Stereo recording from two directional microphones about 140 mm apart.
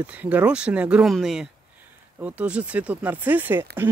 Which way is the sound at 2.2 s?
10° right (ahead or behind).